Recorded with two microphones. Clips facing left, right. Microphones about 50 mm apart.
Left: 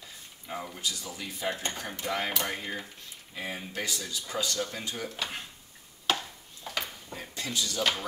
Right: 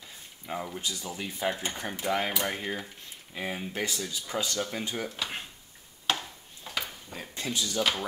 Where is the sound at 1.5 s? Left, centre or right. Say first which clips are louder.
Right 1 dB; centre.